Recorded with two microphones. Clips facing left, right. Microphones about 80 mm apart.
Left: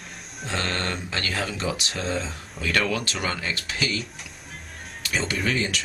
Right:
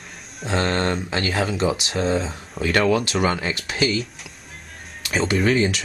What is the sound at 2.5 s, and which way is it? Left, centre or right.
Speech, right.